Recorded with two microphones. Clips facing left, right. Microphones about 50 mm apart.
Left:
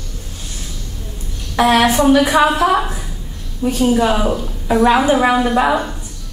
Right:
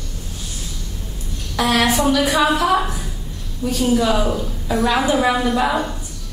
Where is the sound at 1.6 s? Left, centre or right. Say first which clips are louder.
Left 5 dB; left.